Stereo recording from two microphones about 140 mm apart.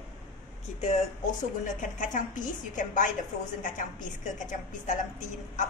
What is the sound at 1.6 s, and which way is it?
A woman's voice, 65° left (ahead or behind).